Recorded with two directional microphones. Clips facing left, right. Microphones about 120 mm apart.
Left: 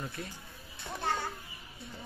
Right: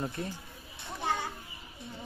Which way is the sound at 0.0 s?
25° right (ahead or behind).